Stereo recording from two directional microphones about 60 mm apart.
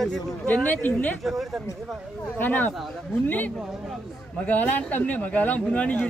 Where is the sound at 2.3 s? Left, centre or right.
Left.